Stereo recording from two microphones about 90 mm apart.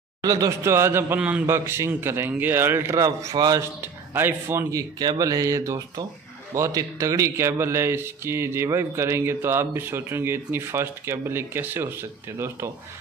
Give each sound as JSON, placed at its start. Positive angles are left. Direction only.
{"t": 0.2, "sound": "speech", "side_deg": -40}
{"t": 1.4, "sound": "speech", "side_deg": -30}
{"t": 3.0, "sound": "speech", "side_deg": -40}
{"t": 3.8, "sound": "speech", "side_deg": -25}